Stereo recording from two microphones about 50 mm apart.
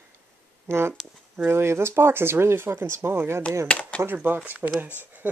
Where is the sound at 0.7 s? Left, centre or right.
Right.